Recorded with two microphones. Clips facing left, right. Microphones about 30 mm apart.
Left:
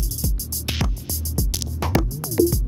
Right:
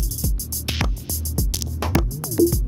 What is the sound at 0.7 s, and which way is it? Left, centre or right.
Music, centre.